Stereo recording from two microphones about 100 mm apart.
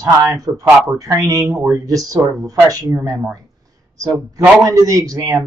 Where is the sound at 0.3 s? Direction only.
35° right (ahead or behind).